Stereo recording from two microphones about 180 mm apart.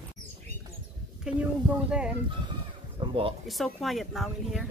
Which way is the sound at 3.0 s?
30° right (ahead or behind).